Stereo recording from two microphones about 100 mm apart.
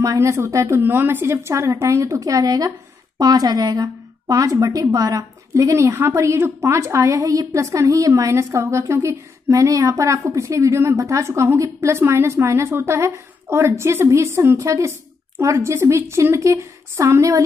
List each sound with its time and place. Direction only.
0.0 s speech: 30° right (ahead or behind)
0.7 s a woman's voice: 20° right (ahead or behind)